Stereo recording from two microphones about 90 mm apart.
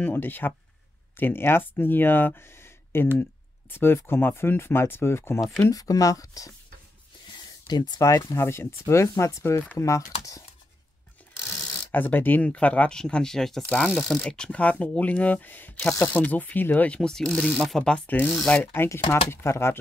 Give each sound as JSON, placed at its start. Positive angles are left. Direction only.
{"t": 0.0, "sound": "speech", "side_deg": 20}
{"t": 5.6, "sound": "speech", "side_deg": 40}
{"t": 8.0, "sound": "speech", "side_deg": 35}
{"t": 11.9, "sound": "speech", "side_deg": 20}